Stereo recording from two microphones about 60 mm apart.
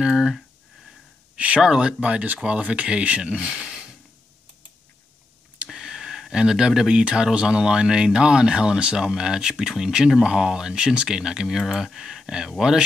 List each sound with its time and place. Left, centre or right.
0.0 s a sound: centre
1.3 s speech: centre
5.7 s speech: centre